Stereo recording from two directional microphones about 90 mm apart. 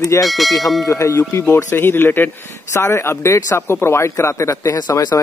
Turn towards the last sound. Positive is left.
turn(degrees=45)  # may be behind; listen again after turning